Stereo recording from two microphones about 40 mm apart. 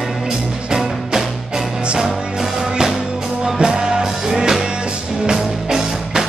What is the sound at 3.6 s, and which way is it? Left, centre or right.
Music, right.